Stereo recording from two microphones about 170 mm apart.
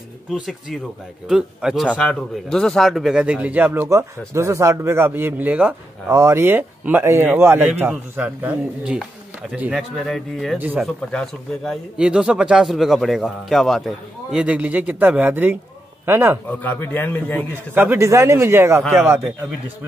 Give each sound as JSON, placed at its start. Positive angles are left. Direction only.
{"t": 0.3, "sound": "a man's voice", "side_deg": 0}
{"t": 10.6, "sound": "a man's voice", "side_deg": -10}
{"t": 11.1, "sound": "a man's voice", "side_deg": 5}
{"t": 16.4, "sound": "a man's voice", "side_deg": 10}
{"t": 17.7, "sound": "a man's voice", "side_deg": -15}